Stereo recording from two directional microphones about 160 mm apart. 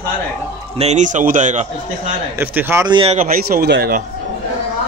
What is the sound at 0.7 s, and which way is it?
Speech, 45° right (ahead or behind).